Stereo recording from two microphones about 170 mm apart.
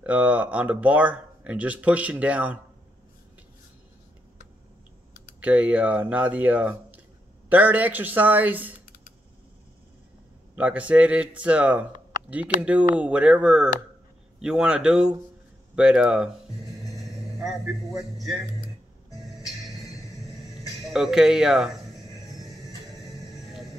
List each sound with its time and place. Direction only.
0.0 s speech: 10° right (ahead or behind)
5.4 s speech: 10° right (ahead or behind)
10.5 s a man's voice: 10° right (ahead or behind)
16.9 s vehicle: centre (ahead or behind)
19.1 s music: centre (ahead or behind)
20.6 s speech: centre (ahead or behind)
22.4 s music: 20° left (ahead or behind)
23.4 s music: centre (ahead or behind)